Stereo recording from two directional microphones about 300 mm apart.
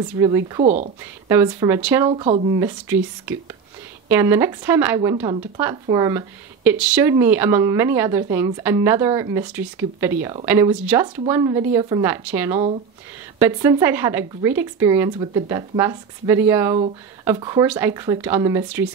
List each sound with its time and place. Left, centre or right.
0.2 s speech: centre
1.3 s speech: centre